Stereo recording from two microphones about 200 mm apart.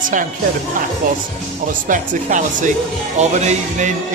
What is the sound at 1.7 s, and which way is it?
A man's voice, 40° right (ahead or behind).